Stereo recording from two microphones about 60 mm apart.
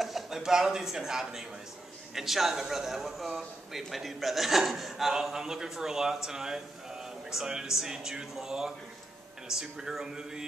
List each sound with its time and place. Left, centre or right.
0.0 s a man's voice: centre